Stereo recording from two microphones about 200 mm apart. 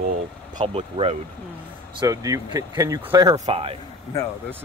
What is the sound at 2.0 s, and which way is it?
Speech, 15° right (ahead or behind).